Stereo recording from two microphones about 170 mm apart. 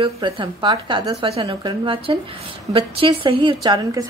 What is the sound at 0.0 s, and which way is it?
A woman's voice, 30° right (ahead or behind).